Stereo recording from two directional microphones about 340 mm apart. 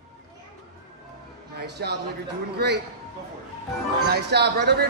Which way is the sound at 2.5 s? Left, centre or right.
Right.